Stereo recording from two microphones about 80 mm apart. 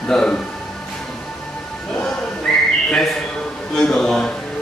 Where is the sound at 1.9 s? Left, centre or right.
Centre.